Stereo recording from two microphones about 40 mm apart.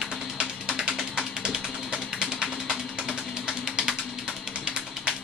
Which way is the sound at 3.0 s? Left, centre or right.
Centre.